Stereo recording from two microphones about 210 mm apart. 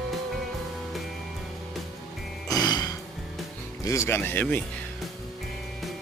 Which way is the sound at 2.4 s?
20° left (ahead or behind).